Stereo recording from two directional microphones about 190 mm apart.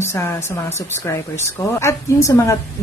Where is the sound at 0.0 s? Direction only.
15° left (ahead or behind).